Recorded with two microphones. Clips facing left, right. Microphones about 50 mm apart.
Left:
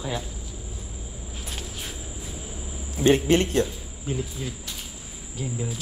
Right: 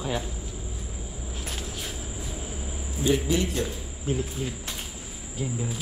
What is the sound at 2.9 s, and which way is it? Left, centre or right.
Speech, left.